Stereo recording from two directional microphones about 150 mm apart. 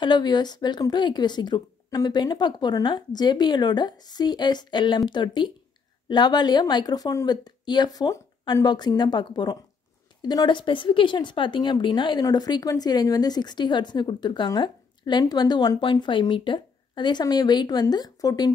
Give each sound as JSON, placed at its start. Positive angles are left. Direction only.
{"t": 0.0, "sound": "a woman's voice", "side_deg": 30}